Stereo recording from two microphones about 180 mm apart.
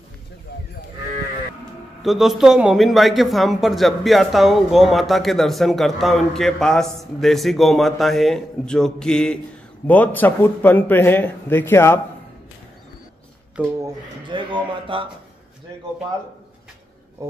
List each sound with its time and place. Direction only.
2.0 s a man's voice: centre (ahead or behind)
13.8 s speech: 25° right (ahead or behind)